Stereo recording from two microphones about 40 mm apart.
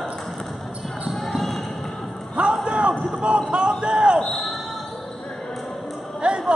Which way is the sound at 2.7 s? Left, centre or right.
Right.